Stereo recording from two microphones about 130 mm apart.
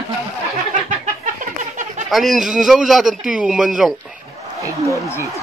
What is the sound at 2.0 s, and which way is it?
Speech, centre (ahead or behind).